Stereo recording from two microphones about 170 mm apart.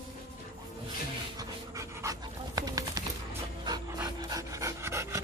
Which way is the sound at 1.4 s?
20° right (ahead or behind).